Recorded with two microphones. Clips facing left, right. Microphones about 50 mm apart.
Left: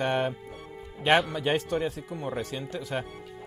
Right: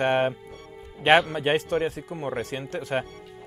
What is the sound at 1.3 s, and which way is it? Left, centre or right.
A man's voice, right.